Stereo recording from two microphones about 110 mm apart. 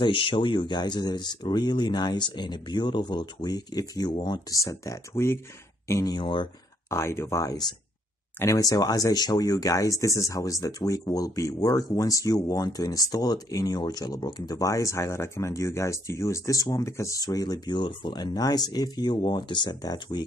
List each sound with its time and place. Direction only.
0.0 s speech: 50° left (ahead or behind); by 6.1 s 25° left (ahead or behind)
6.1 s speech: 45° left (ahead or behind)
6.9 s speech: 25° left (ahead or behind)